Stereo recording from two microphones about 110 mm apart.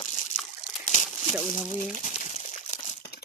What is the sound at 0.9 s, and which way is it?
Crumpling, 90° left.